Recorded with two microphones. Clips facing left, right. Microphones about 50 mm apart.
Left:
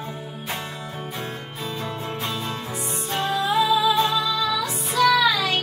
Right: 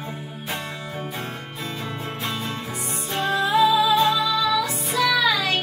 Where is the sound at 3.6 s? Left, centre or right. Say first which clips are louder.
Right 3 dB; centre.